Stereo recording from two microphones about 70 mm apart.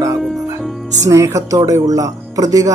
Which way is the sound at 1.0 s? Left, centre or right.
Right.